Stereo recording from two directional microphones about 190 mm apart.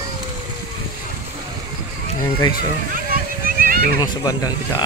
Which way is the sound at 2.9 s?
50° right (ahead or behind).